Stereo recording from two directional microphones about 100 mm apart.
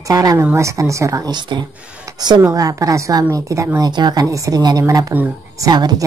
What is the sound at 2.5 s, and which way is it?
A woman's voice, 35° right (ahead or behind).